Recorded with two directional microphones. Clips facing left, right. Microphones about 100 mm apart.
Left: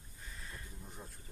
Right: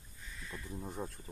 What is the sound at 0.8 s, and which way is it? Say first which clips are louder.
Speech: right 10 dB; 40° right (ahead or behind).